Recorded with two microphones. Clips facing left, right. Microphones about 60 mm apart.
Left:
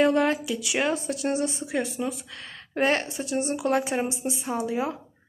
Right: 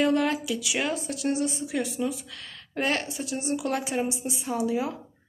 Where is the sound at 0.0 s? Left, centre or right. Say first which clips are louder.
Left 2 dB; left.